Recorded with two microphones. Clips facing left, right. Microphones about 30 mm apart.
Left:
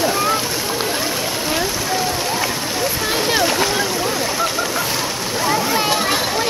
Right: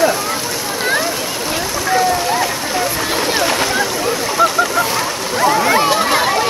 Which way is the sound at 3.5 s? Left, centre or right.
Centre.